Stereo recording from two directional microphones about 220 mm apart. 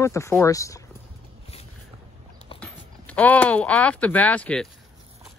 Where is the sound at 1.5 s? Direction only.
25° left (ahead or behind).